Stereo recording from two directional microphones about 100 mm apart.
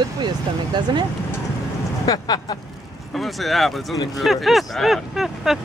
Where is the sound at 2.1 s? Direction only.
45° left (ahead or behind).